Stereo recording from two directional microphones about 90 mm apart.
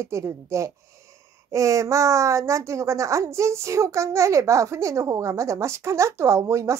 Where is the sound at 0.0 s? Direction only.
35° right (ahead or behind).